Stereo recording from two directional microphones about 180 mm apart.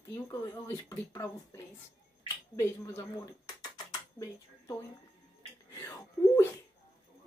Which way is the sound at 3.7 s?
15° left (ahead or behind).